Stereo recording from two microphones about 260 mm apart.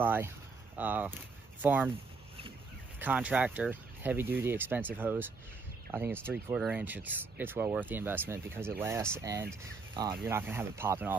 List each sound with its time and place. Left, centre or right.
0.0 s speech: centre
3.0 s speech: centre